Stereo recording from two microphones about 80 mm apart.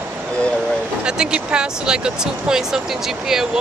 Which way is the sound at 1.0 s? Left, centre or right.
Centre.